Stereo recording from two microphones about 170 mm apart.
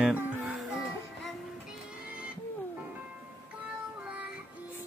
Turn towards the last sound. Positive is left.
turn(degrees=-5)  # may be behind; listen again after turning